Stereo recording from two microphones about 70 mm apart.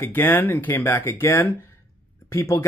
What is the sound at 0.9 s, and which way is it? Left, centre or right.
Speech, left.